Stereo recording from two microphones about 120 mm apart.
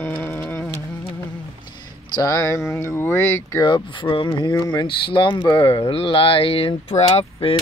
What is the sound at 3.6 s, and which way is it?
Speech, 40° left (ahead or behind).